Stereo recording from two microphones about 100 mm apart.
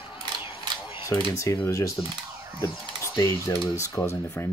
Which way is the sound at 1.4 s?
30° left (ahead or behind).